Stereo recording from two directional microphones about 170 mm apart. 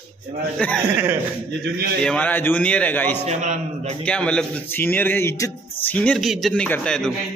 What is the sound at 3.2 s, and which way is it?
Speech, 45° right (ahead or behind).